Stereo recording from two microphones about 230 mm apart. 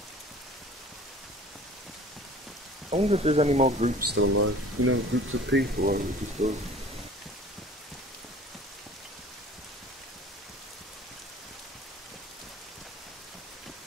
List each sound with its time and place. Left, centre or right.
2.9 s speech: right
4.1 s speech: right